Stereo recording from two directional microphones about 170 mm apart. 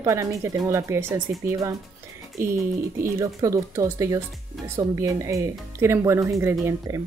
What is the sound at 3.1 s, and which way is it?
Speech, 20° right (ahead or behind).